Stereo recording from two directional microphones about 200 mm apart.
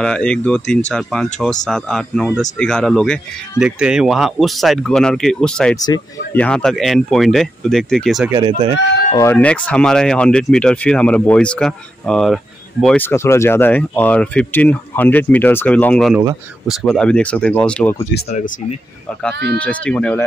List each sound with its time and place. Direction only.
0.0 s speech: 5° left (ahead or behind)
8.3 s speech: 20° right (ahead or behind)
9.1 s speech: 10° left (ahead or behind)
18.3 s speech: 35° left (ahead or behind)
19.3 s speech: 55° right (ahead or behind)
19.6 s speech: 5° left (ahead or behind)